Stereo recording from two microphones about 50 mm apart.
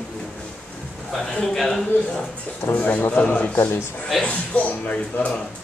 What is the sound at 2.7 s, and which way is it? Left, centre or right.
Speech, left.